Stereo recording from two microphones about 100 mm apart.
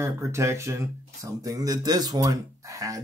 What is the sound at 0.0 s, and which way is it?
Speech, 30° right (ahead or behind).